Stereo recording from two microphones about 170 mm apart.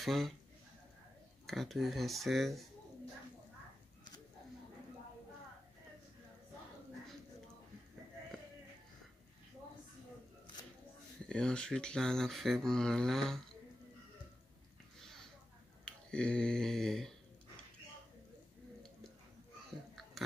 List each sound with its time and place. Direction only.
0.0 s speech: centre (ahead or behind)
1.4 s speech: centre (ahead or behind)
11.2 s speech: 5° left (ahead or behind)
15.0 s a sound: centre (ahead or behind)
15.8 s finger snapping: 5° left (ahead or behind)